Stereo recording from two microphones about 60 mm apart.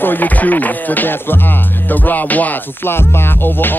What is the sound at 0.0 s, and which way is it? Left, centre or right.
Music, left.